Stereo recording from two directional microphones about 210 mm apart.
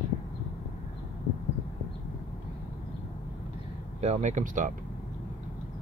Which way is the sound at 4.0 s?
35° right (ahead or behind).